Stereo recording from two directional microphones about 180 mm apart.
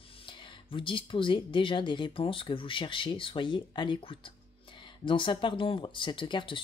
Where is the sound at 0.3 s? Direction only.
30° left (ahead or behind).